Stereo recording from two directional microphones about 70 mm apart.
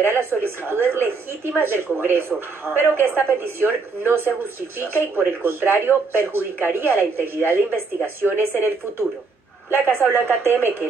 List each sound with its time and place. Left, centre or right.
0.0 s a man's voice: right